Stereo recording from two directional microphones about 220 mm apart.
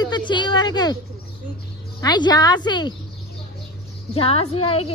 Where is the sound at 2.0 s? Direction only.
20° left (ahead or behind).